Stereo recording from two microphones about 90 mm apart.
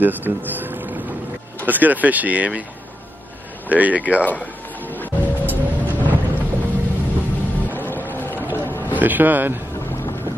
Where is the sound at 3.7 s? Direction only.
15° right (ahead or behind).